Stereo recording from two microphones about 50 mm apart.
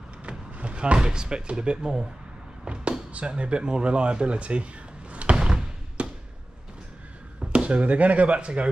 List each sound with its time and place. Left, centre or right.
0.2 s speech: right
5.3 s door: centre
6.0 s basketball bounce: right
7.4 s speech: right